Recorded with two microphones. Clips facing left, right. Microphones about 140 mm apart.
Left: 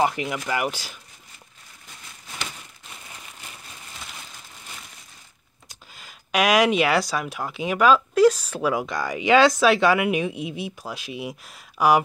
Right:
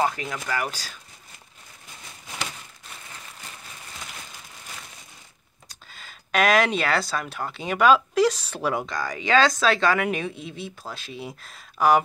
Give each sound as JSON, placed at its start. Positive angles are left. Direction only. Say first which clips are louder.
{"t": 0.0, "sound": "speech", "louder": "left 3 dB", "side_deg": 15}
{"t": 5.9, "sound": "speech", "louder": "left 1 dB", "side_deg": 10}
{"t": 8.8, "sound": "speech", "louder": "left 4 dB", "side_deg": 20}